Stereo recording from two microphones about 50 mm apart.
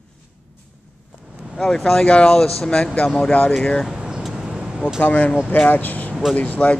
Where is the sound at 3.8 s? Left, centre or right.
Centre.